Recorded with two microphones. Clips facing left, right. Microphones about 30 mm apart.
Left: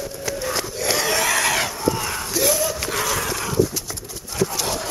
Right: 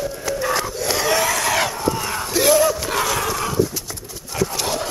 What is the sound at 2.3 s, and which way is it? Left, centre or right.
Battle cry, right.